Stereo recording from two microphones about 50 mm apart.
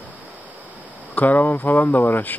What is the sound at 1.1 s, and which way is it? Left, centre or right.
Speech, left.